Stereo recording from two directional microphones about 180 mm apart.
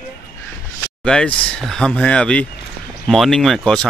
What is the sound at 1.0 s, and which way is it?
Speech, 5° left (ahead or behind).